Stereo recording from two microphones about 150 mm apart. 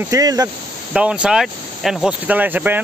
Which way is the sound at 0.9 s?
5° right (ahead or behind).